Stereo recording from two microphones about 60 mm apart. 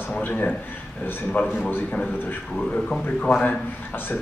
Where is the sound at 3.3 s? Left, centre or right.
Left.